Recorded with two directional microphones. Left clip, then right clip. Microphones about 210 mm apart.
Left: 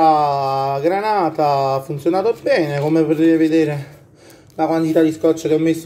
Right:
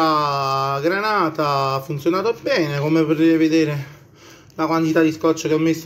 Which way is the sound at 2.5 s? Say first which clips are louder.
Left 2 dB; 45° right (ahead or behind).